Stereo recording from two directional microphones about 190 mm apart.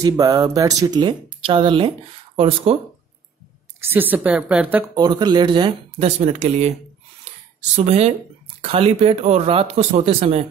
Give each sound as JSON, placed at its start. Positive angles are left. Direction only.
{"t": 0.0, "sound": "speech", "side_deg": -20}
{"t": 3.9, "sound": "a woman's voice", "side_deg": -10}
{"t": 4.9, "sound": "speech", "side_deg": -20}
{"t": 7.7, "sound": "speech", "side_deg": -35}